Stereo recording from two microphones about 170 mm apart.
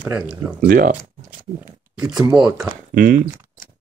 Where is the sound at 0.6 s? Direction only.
55° right (ahead or behind).